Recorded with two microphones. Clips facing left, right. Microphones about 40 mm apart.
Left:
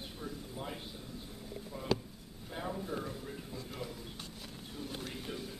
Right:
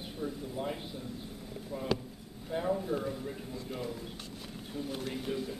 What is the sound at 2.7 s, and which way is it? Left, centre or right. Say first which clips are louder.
A man's voice: right 6 dB; centre.